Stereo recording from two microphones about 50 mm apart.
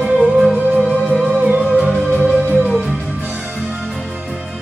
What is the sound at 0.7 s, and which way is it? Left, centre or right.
Music, right.